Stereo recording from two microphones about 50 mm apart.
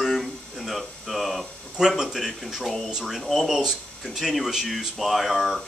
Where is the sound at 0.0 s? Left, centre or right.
Centre.